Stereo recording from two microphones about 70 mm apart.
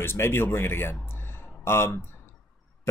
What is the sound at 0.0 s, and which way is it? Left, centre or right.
Speech, left.